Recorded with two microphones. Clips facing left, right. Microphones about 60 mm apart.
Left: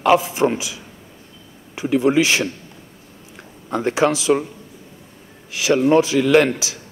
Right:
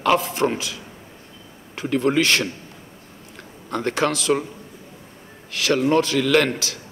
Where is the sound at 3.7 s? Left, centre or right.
Centre.